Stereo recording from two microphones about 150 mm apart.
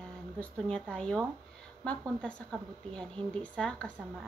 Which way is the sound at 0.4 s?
5° left (ahead or behind).